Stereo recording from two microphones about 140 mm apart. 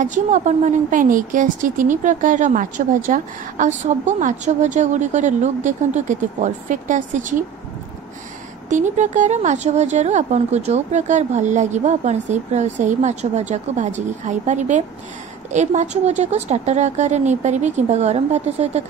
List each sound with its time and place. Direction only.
0.0 s a woman's voice: 60° right (ahead or behind)
8.6 s a woman's voice: 60° right (ahead or behind)